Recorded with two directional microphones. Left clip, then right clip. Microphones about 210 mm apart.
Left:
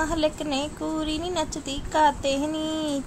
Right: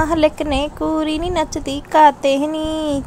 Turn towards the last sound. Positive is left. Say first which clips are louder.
# right 7 dB
turn(degrees=-25)  # may be behind; listen again after turning